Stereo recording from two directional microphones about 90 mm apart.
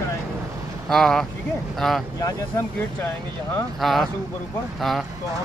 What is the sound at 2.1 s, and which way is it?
Speech, 40° left (ahead or behind).